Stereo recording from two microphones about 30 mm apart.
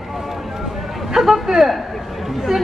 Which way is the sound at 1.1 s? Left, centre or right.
Centre.